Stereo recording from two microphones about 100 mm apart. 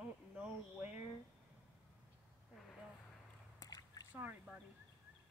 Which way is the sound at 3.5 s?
40° left (ahead or behind).